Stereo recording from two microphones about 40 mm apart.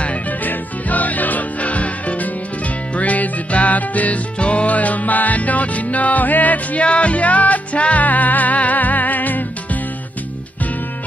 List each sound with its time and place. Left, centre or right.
0.0 s music: left
0.4 s music: left